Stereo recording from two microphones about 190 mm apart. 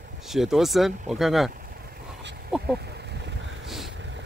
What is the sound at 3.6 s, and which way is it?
Vehicle, centre (ahead or behind).